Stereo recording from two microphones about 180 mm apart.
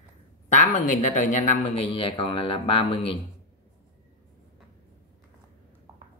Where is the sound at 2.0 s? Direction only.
30° left (ahead or behind).